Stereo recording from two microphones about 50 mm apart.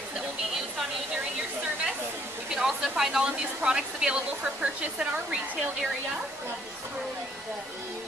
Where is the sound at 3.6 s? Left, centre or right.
Centre.